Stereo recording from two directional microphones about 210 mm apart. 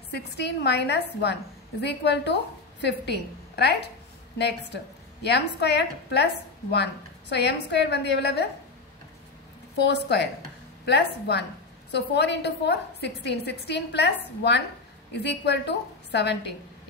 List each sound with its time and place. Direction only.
0.1 s a woman's voice: 55° left (ahead or behind)
9.8 s a woman's voice: 55° left (ahead or behind)